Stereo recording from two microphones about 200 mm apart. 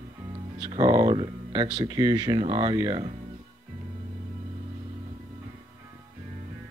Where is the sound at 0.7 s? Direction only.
25° right (ahead or behind).